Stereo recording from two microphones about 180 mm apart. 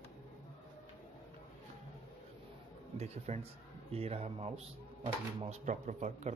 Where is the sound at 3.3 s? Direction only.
40° right (ahead or behind).